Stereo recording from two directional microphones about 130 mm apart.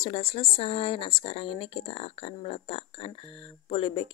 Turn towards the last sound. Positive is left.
turn(degrees=45)  # may be behind; listen again after turning